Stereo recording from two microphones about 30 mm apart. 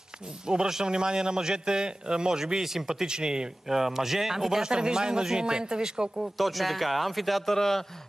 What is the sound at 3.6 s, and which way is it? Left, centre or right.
Speech, centre.